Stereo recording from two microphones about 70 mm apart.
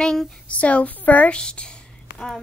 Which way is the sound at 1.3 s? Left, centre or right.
Centre.